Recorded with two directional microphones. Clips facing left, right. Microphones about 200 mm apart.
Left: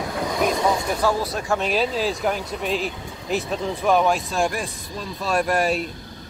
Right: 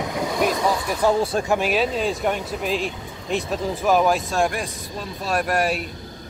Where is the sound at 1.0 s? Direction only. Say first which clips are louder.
Right 6 dB; 25° right (ahead or behind).